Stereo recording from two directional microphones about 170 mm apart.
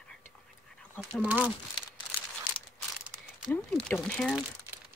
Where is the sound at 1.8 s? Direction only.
30° left (ahead or behind).